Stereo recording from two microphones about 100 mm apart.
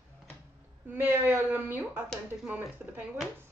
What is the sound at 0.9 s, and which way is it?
A woman's voice, 20° right (ahead or behind).